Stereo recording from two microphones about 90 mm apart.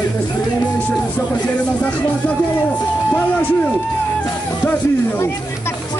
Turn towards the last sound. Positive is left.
turn(degrees=25)  # may be behind; listen again after turning